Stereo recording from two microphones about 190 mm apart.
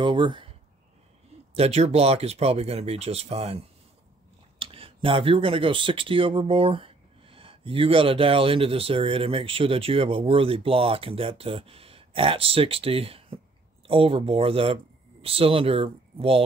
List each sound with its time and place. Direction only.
0.0 s speech: 25° right (ahead or behind)
1.6 s speech: 35° right (ahead or behind)